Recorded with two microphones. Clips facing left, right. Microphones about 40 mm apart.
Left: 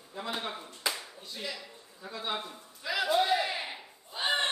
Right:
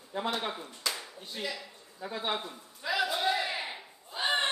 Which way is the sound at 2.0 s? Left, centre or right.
Right.